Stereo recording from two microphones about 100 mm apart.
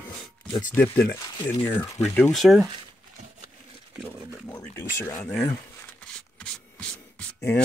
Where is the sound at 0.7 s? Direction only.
20° left (ahead or behind).